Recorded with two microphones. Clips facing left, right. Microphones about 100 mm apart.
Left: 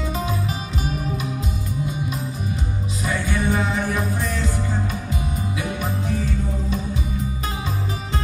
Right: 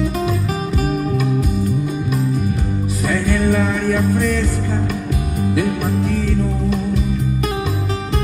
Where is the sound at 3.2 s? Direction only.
60° right (ahead or behind).